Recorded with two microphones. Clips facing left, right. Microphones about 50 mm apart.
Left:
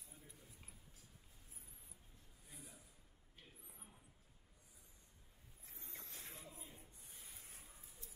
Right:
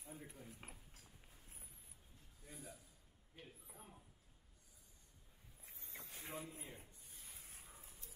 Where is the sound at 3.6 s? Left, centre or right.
Centre.